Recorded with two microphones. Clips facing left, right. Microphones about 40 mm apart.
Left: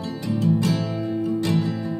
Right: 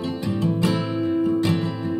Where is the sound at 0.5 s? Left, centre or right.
Right.